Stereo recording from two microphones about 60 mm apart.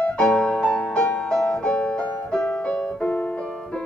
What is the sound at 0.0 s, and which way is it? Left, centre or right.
Music, centre.